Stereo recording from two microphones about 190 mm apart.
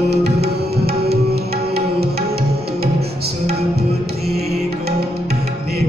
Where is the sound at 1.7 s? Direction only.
55° right (ahead or behind).